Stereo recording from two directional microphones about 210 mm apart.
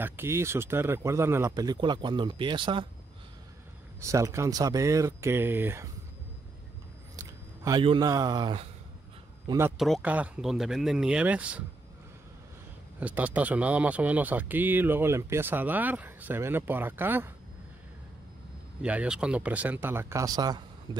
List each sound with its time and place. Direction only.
0.0 s speech: 10° right (ahead or behind)
4.0 s speech: 15° right (ahead or behind)
7.2 s speech: 15° right (ahead or behind)
9.5 s speech: 10° right (ahead or behind)
9.8 s speech: centre (ahead or behind)
13.0 s speech: 5° right (ahead or behind)
18.8 s speech: 5° right (ahead or behind)